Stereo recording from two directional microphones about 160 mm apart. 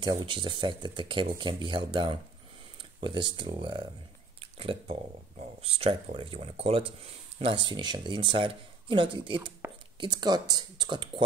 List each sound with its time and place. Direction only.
0.0 s speech: 30° right (ahead or behind)